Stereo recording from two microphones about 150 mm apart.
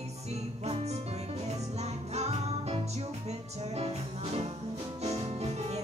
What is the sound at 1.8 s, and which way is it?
Music, 45° right (ahead or behind).